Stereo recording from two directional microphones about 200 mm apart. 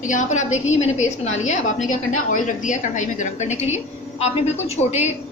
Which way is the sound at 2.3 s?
40° left (ahead or behind).